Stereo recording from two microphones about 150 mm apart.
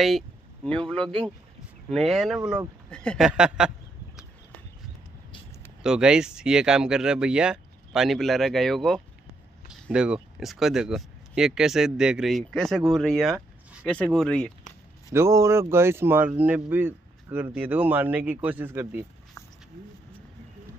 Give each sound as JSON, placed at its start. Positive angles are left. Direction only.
{"t": 0.7, "sound": "speech", "side_deg": 5}
{"t": 3.3, "sound": "speech", "side_deg": -5}
{"t": 5.8, "sound": "speech", "side_deg": -5}
{"t": 15.0, "sound": "speech", "side_deg": -20}